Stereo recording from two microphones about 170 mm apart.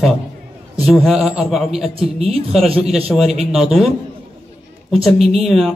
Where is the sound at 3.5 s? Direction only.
Centre (ahead or behind).